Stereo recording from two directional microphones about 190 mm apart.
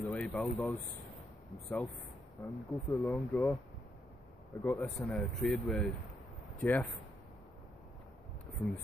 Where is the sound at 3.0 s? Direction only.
5° left (ahead or behind).